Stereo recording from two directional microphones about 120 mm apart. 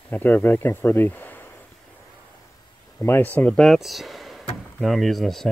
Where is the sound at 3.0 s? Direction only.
15° left (ahead or behind); by 5.4 s centre (ahead or behind).